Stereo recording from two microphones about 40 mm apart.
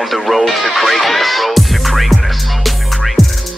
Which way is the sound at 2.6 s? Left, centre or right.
Centre.